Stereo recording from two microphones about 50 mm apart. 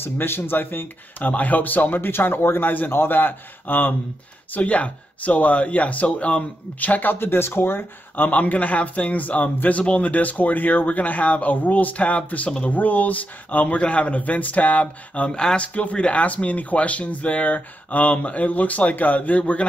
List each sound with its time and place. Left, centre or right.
0.0 s speech: left
4.6 s speech: left
8.3 s speech: left